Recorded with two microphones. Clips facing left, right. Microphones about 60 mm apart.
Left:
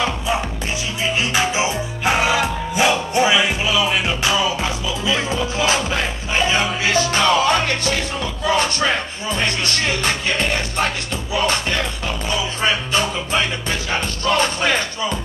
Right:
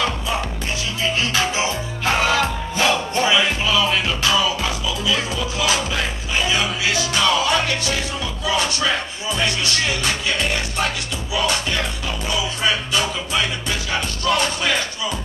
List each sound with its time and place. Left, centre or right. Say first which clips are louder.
1.0 s music: left 1 dB; left